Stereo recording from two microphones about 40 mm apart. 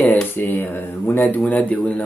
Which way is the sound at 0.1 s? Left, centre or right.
Left.